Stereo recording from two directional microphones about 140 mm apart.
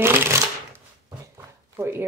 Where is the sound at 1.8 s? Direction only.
15° right (ahead or behind).